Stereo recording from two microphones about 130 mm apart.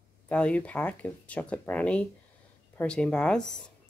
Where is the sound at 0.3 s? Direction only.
10° left (ahead or behind).